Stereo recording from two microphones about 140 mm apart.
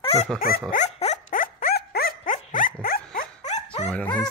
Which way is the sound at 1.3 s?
85° left.